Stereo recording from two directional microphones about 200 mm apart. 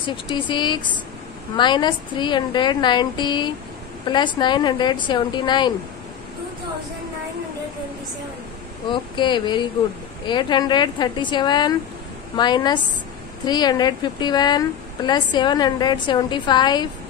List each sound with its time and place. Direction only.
0.0 s a woman's voice: 25° left (ahead or behind)
8.9 s a woman's voice: 25° left (ahead or behind)